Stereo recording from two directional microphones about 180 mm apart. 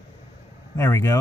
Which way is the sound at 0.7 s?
15° left (ahead or behind).